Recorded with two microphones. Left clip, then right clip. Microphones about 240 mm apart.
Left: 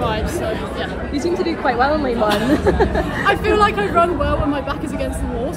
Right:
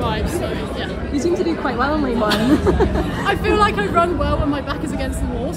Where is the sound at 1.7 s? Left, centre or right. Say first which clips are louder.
Left 6 dB; centre.